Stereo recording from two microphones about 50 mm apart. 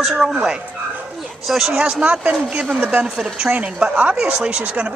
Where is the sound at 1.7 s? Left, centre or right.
Centre.